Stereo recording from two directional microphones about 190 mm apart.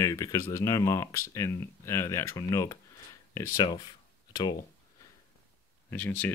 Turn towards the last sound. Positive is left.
turn(degrees=10)  # may be behind; listen again after turning